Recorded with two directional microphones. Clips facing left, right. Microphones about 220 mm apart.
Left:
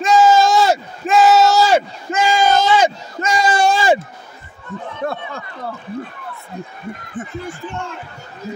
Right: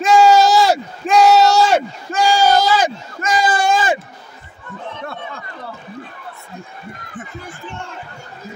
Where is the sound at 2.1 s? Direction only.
20° left (ahead or behind).